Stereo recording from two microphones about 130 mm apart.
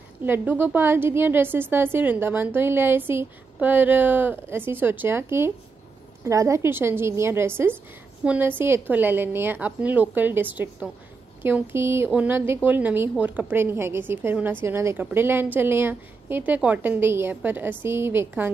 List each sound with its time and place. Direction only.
0.2 s a woman's voice: 15° right (ahead or behind)